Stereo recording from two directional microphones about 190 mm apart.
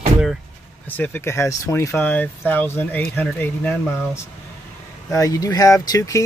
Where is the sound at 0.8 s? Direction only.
10° left (ahead or behind).